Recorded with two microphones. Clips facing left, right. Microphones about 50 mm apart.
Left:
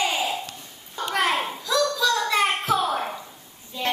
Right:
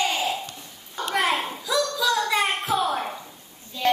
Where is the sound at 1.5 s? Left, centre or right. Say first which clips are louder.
Left 2 dB; centre.